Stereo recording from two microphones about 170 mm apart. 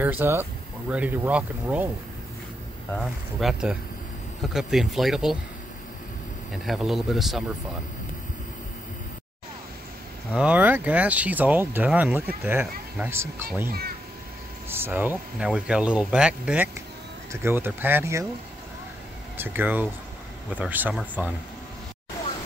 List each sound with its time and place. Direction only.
0.0 s speech: 10° right (ahead or behind)
2.9 s speech: centre (ahead or behind)
6.5 s speech: centre (ahead or behind)
10.3 s speech: 10° right (ahead or behind)
13.7 s a child's voice: 60° right (ahead or behind)
14.7 s speech: 10° right (ahead or behind)
19.3 s speech: 10° right (ahead or behind)